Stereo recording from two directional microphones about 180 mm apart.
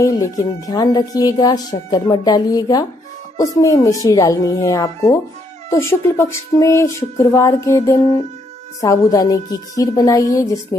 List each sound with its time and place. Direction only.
0.0 s speech: 20° left (ahead or behind)